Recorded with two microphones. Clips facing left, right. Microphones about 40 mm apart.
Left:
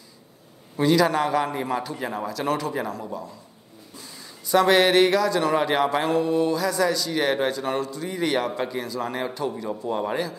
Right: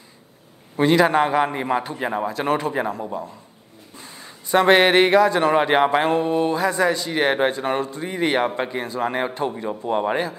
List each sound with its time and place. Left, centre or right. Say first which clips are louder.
0.7 s speech: right 3 dB; right